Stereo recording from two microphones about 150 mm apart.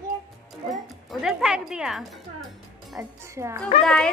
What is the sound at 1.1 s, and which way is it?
Speech, centre (ahead or behind).